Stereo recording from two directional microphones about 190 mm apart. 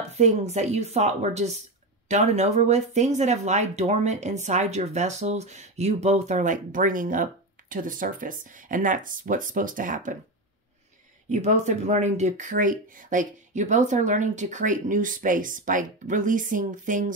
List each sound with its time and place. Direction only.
0.1 s speech: 35° right (ahead or behind)
11.2 s speech: 40° right (ahead or behind)